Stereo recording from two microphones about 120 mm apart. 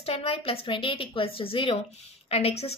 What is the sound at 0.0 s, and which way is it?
Speech, 55° left (ahead or behind).